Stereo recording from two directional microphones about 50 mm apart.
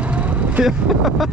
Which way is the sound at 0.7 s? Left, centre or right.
Centre.